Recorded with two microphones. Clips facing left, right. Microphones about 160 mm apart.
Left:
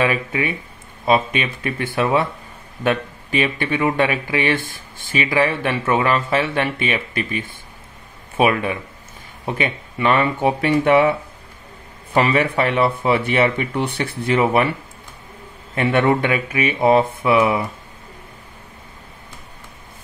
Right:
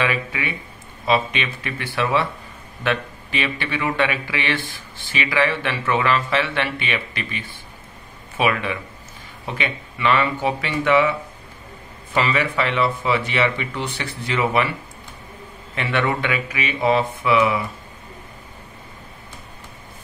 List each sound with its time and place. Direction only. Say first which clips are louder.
0.0 s speech: left 4 dB; 40° left (ahead or behind)
15.7 s speech: left 6 dB; 45° left (ahead or behind)